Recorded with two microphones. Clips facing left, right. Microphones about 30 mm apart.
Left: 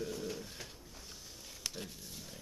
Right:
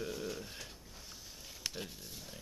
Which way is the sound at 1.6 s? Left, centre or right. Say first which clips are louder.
Right 1 dB; centre.